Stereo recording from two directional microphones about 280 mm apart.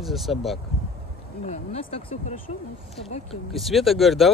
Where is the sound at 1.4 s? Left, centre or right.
Left.